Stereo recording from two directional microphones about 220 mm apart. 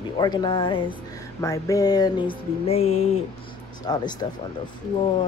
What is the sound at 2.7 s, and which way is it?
Speech, 30° left (ahead or behind).